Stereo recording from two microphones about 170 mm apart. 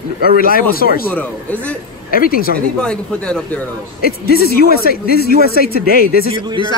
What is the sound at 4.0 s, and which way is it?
A man's voice, 65° left (ahead or behind).